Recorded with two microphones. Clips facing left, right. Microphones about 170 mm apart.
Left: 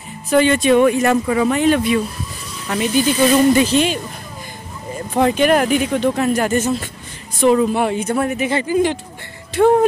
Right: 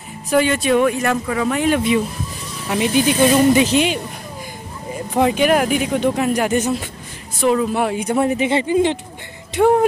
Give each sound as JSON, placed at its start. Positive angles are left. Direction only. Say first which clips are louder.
{"t": 0.3, "sound": "speech", "louder": "left 3 dB", "side_deg": -5}
{"t": 2.7, "sound": "speech", "louder": "even", "side_deg": -20}
{"t": 5.1, "sound": "speech", "louder": "left 1 dB", "side_deg": -10}
{"t": 7.3, "sound": "speech", "louder": "left 3 dB", "side_deg": 0}
{"t": 8.0, "sound": "speech", "louder": "right 1 dB", "side_deg": -15}
{"t": 8.3, "sound": "speech", "louder": "right 1 dB", "side_deg": -25}
{"t": 9.6, "sound": "speech", "louder": "left 1 dB", "side_deg": -10}